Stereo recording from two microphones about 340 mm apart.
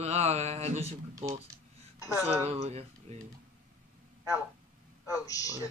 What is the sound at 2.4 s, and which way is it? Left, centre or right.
Speech, centre.